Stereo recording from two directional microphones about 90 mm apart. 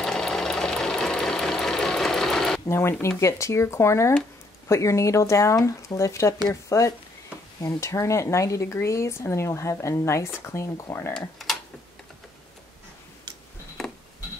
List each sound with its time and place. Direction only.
0.0 s sewing machine: 5° left (ahead or behind)
2.6 s speech: 30° left (ahead or behind)
11.1 s speech: centre (ahead or behind)